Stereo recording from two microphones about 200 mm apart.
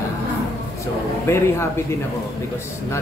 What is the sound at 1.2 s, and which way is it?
Speech, 10° left (ahead or behind).